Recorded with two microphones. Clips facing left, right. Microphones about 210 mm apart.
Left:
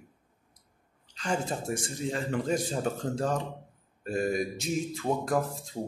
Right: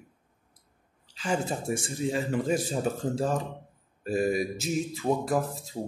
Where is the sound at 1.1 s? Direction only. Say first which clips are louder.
Right 2 dB; 5° right (ahead or behind).